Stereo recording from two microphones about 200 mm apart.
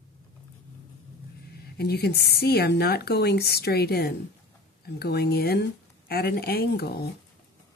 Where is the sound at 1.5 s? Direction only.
55° left (ahead or behind).